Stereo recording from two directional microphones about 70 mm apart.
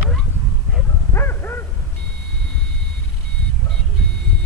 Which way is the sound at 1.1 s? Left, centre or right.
Left.